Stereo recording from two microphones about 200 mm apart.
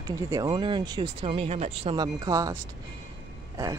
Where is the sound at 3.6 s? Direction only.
15° right (ahead or behind).